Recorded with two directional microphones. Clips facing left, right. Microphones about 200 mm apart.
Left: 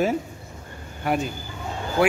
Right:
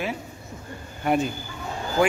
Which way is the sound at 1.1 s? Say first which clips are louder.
Right 2 dB; centre (ahead or behind).